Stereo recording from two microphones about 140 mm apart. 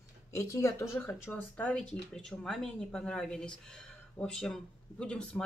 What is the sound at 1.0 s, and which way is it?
Speech, 10° left (ahead or behind).